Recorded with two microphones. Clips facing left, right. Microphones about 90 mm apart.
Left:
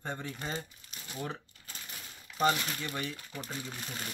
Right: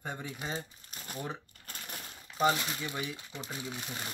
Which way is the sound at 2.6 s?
10° right (ahead or behind).